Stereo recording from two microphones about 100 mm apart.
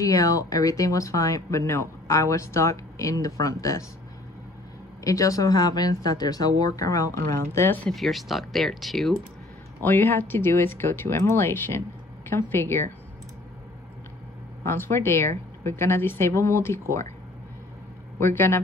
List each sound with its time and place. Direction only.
0.0 s speech: 35° left (ahead or behind)
5.0 s speech: 35° left (ahead or behind)
7.9 s speech: centre (ahead or behind)
9.8 s speech: 20° left (ahead or behind)
14.6 s speech: 25° left (ahead or behind)
18.2 s speech: 25° left (ahead or behind)